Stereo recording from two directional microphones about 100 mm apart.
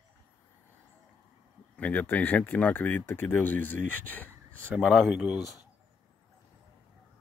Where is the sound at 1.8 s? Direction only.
15° left (ahead or behind).